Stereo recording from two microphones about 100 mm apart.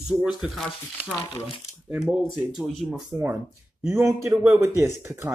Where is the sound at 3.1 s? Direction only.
25° right (ahead or behind).